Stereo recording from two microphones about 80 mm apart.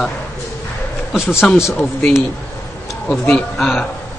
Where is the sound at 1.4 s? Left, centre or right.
Centre.